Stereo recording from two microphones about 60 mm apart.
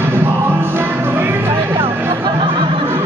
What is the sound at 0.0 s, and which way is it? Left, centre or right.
Music, right.